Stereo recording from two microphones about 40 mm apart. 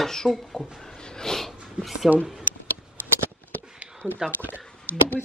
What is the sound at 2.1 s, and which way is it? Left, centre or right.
Speech, centre.